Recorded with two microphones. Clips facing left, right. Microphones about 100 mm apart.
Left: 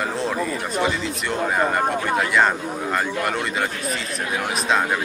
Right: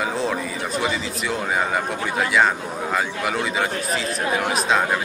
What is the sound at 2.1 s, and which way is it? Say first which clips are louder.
A man's voice: right 2 dB; centre (ahead or behind).